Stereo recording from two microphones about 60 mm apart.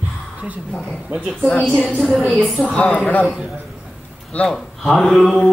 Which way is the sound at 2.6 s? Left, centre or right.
Centre.